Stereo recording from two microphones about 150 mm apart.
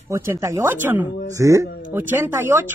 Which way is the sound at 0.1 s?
20° right (ahead or behind).